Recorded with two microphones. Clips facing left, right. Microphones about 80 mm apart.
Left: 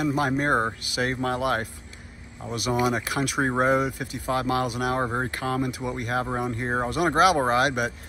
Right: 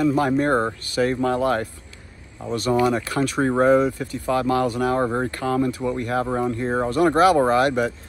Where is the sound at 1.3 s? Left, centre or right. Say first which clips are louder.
Right 4 dB; right.